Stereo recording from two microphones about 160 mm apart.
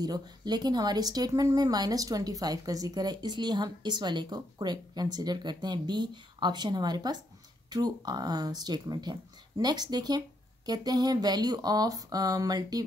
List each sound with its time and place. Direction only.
0.0 s a woman's voice: 25° right (ahead or behind)